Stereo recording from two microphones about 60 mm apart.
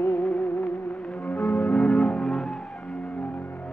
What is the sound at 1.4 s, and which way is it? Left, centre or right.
Music, left.